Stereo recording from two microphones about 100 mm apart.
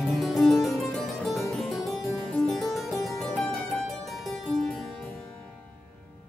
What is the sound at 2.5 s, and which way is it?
Music, centre (ahead or behind).